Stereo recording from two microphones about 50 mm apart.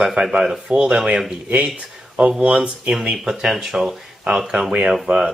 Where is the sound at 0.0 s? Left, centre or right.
Centre.